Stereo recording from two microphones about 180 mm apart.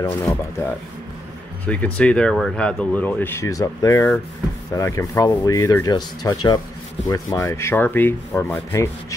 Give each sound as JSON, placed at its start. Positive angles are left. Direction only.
{"t": 0.0, "sound": "speech", "side_deg": 20}
{"t": 1.7, "sound": "speech", "side_deg": 5}
{"t": 4.7, "sound": "rub", "side_deg": 15}
{"t": 7.1, "sound": "speech", "side_deg": 20}